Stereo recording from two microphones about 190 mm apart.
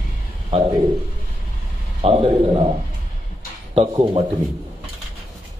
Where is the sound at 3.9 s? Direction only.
25° right (ahead or behind).